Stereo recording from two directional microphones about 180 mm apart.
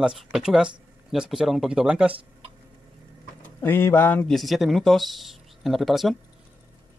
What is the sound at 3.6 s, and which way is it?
Speech, 10° left (ahead or behind).